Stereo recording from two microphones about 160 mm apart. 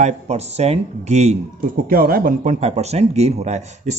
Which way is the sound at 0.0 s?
40° right (ahead or behind).